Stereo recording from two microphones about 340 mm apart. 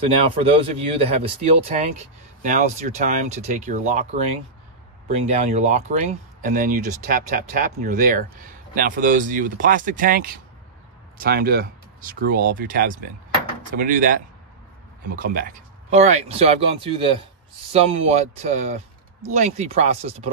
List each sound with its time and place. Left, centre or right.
0.0 s speech: centre